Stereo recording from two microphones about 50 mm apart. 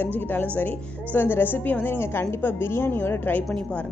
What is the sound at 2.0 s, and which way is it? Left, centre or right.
A woman's voice, left.